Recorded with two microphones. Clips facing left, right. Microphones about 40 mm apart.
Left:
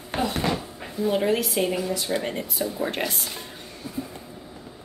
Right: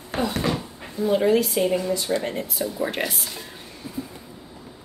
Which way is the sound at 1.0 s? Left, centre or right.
Centre.